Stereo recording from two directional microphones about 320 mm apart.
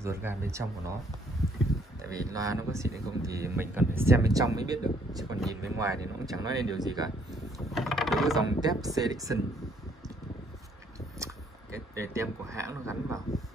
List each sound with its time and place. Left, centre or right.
0.0 s speech: centre
2.0 s speech: centre
7.5 s mechanisms: centre
8.5 s speech: centre
11.1 s speech: centre